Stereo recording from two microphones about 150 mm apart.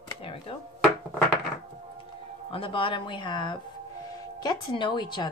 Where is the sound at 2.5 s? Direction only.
35° left (ahead or behind).